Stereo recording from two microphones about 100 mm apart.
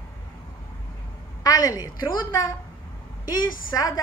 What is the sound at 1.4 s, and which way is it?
A woman's voice, 35° left (ahead or behind).